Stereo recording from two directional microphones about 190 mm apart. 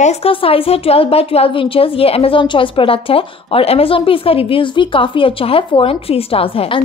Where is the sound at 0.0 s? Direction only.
30° left (ahead or behind).